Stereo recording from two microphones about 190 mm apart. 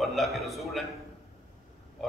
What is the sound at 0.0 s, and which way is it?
Speech, centre (ahead or behind).